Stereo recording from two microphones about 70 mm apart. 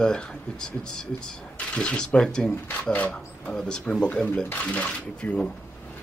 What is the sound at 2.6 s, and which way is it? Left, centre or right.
Speech, left.